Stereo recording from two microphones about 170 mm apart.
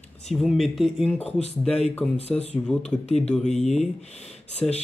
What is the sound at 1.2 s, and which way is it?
Speech, 40° left (ahead or behind).